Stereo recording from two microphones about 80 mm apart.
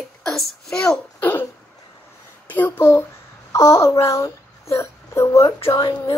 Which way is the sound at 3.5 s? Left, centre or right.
Left.